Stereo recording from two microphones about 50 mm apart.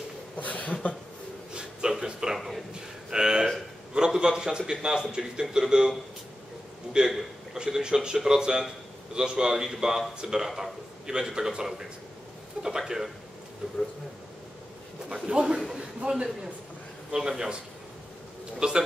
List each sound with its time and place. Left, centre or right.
0.4 s a sound: left
1.5 s a sound: centre
3.9 s a man's voice: centre
7.0 s a man's voice: centre
15.0 s a man's voice: centre
18.6 s a man's voice: centre